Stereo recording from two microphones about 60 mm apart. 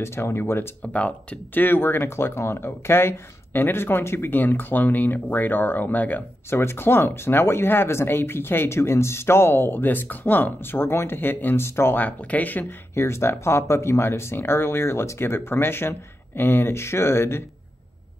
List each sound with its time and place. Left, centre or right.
0.0 s speech: left
0.8 s speech: left
1.6 s speech: left
6.5 s speech: left
12.0 s speech: left
12.9 s speech: left